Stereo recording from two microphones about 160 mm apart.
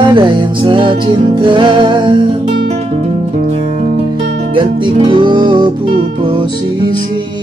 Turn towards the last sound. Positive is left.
turn(degrees=-30)  # may be behind; listen again after turning